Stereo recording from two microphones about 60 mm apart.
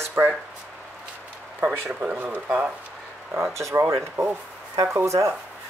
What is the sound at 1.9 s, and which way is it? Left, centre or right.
Speech, right.